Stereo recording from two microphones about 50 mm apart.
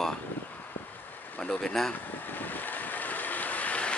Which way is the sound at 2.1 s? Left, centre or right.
Left.